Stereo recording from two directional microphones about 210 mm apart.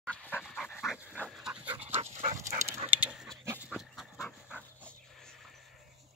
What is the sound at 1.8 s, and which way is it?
Dog, 30° right (ahead or behind).